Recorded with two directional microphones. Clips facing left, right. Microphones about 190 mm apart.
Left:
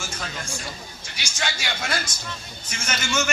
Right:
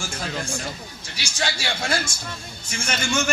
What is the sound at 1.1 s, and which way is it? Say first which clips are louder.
A man's voice: right 3 dB; 35° right (ahead or behind).